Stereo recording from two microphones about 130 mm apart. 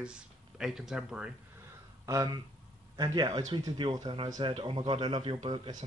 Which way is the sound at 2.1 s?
25° right (ahead or behind).